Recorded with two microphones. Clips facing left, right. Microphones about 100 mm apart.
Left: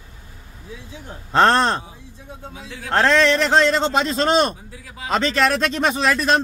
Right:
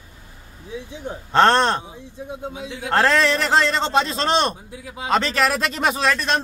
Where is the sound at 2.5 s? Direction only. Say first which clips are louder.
Right 4 dB; 20° right (ahead or behind).